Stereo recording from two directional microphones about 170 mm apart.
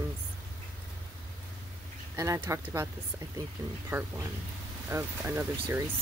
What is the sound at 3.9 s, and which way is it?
Speech, 15° right (ahead or behind).